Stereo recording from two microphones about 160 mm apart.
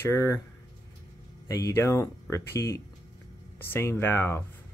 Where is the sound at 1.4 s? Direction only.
20° left (ahead or behind).